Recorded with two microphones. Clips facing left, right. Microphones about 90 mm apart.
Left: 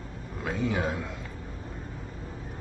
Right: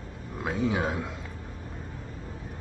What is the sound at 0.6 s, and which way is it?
Speech, 20° right (ahead or behind).